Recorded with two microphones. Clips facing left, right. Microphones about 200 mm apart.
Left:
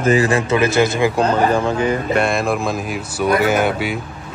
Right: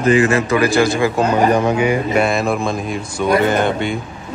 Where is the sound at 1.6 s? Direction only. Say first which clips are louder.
Right 2 dB; 15° right (ahead or behind).